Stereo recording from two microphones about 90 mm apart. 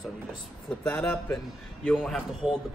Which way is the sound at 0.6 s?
20° left (ahead or behind).